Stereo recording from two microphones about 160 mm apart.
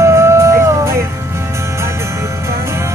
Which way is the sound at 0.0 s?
15° right (ahead or behind).